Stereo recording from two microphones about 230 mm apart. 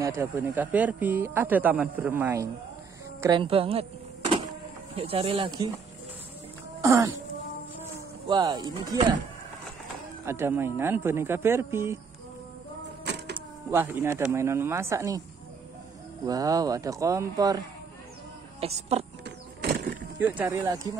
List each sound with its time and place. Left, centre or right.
0.0 s speech: centre
4.9 s speech: right
6.8 s speech: centre
7.8 s a sound: centre
10.2 s speech: centre
13.0 s vehicle: right
13.7 s speech: centre
16.3 s speech: centre
18.6 s speech: right
19.2 s vehicle: right
20.2 s speech: centre